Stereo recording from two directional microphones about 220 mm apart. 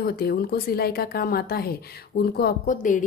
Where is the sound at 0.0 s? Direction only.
45° left (ahead or behind).